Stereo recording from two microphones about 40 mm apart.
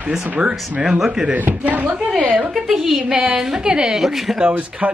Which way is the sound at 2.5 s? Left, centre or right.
Centre.